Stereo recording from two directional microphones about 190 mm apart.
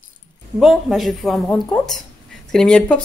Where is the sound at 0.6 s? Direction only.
Centre (ahead or behind).